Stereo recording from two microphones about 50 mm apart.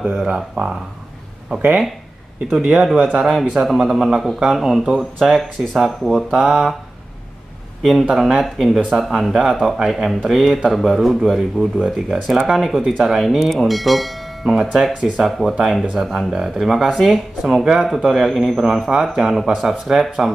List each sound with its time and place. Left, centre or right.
0.0 s speech: centre
0.3 s speech: centre
2.5 s speech: centre
8.1 s speech: centre